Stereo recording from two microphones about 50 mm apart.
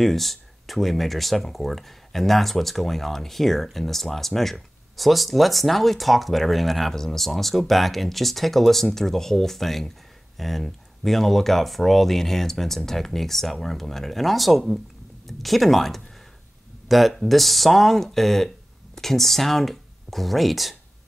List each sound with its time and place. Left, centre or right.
0.0 s speech: centre